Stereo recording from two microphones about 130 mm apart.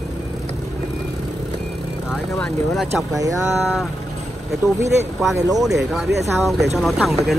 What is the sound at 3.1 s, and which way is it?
Speech, 25° right (ahead or behind).